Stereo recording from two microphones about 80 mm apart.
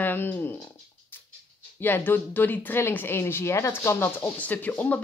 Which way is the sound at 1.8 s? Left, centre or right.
Left.